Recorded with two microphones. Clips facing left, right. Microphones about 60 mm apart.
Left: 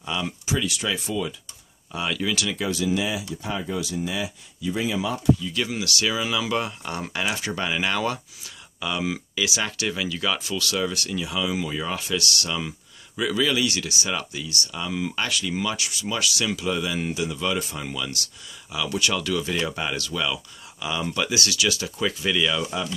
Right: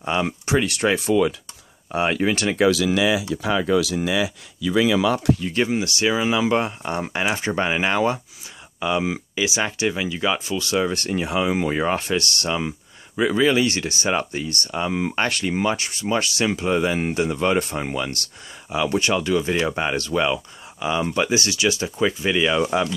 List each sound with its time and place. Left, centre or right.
0.0 s speech: right
0.9 s speech: right
1.9 s speech: right
2.7 s speech: right
5.5 s speech: right